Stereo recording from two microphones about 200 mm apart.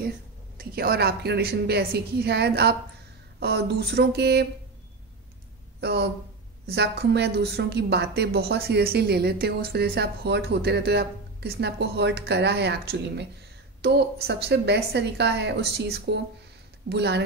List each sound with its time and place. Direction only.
0.6 s a woman's voice: 50° right (ahead or behind)
5.8 s a woman's voice: 55° right (ahead or behind)